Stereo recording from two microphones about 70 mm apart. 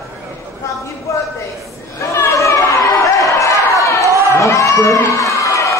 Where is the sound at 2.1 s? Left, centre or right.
Left.